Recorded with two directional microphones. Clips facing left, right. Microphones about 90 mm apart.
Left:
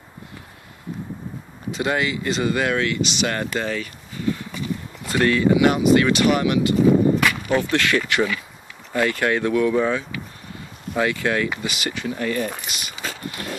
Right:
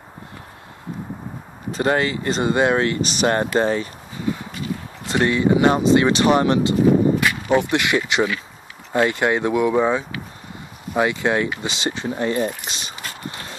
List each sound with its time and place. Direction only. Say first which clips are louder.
1.7 s speech: right 3 dB; 40° right (ahead or behind)
5.0 s speech: even; 20° right (ahead or behind)
7.4 s speech: right 2 dB; 20° right (ahead or behind)